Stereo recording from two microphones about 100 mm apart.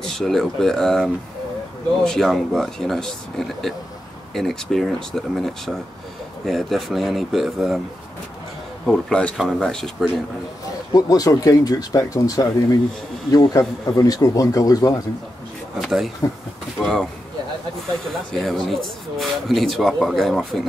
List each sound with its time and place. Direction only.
0.0 s speech: 5° left (ahead or behind)
8.8 s speech: 10° left (ahead or behind)
10.9 s a man's voice: 40° left (ahead or behind)
15.8 s speech: centre (ahead or behind)
18.3 s speech: centre (ahead or behind)